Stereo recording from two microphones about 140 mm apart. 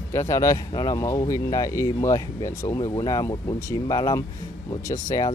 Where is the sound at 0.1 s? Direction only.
20° left (ahead or behind).